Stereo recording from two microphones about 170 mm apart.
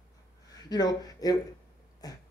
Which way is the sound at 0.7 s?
25° left (ahead or behind).